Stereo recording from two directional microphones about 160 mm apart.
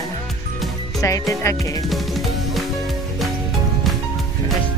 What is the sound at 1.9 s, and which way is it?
Music, centre (ahead or behind).